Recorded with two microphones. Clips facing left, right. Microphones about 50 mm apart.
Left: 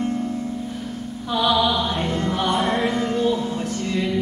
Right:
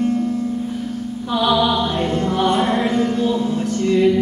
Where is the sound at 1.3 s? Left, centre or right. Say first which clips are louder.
Right 3 dB; centre.